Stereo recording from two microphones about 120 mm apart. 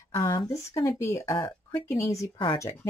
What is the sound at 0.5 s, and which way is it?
Speech, 25° left (ahead or behind).